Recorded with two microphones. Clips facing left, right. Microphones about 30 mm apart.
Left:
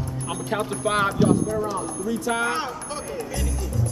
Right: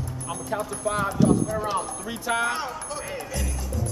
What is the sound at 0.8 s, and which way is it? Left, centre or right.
Speech, left.